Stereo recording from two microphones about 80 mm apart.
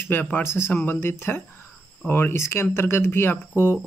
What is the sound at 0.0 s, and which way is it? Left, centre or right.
Speech, left.